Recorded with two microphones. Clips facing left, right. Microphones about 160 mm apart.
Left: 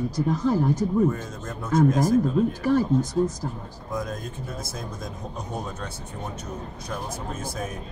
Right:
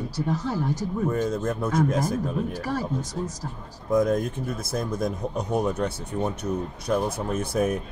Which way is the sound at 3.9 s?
60° right (ahead or behind).